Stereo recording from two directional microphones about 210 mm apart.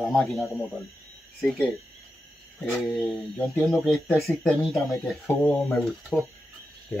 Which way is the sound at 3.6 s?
10° left (ahead or behind).